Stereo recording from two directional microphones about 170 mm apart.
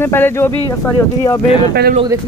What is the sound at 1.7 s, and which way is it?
Speech, 70° right (ahead or behind).